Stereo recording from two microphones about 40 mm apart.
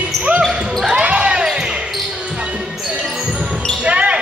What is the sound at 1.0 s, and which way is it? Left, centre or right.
Basketball bounce, right.